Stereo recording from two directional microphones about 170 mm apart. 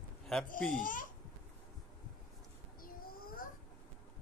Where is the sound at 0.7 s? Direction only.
50° left (ahead or behind).